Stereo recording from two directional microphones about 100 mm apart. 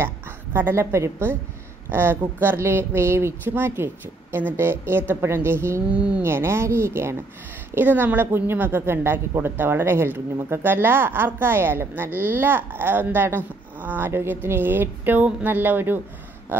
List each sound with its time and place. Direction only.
0.0 s a woman's voice: 20° right (ahead or behind)
5.9 s speech: 15° right (ahead or behind)
6.2 s a woman's voice: 25° right (ahead or behind)